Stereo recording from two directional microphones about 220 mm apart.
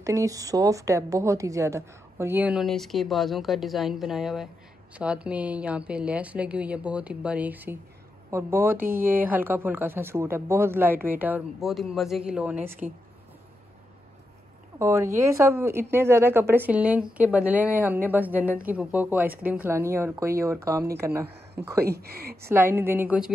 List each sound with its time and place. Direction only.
0.0 s a woman's voice: 15° right (ahead or behind)
8.8 s speech: 40° right (ahead or behind)
9.1 s a woman's voice: 10° right (ahead or behind)
14.8 s a woman's voice: 10° right (ahead or behind)
21.8 s speech: 45° right (ahead or behind)
22.5 s a woman's voice: 10° right (ahead or behind)